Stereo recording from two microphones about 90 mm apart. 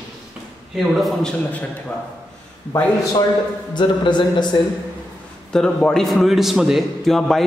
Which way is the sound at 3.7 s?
55° left (ahead or behind).